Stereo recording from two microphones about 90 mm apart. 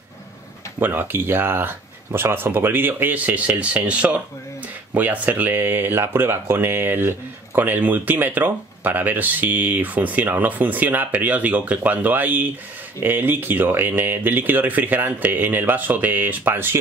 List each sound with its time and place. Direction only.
0.7 s speech: 25° right (ahead or behind)